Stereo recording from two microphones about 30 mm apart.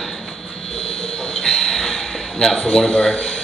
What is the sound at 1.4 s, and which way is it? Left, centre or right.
Train, centre.